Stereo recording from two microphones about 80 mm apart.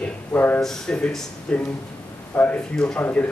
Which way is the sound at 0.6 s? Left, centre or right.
Centre.